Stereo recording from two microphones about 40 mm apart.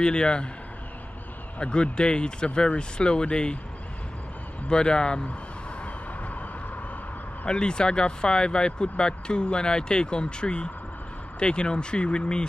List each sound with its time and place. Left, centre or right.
0.0 s speech: left
1.6 s speech: left
4.6 s speech: left
7.4 s speech: left